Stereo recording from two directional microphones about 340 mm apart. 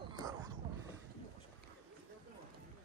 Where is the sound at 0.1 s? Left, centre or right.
Centre.